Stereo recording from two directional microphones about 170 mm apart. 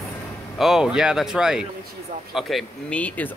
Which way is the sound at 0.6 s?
5° right (ahead or behind).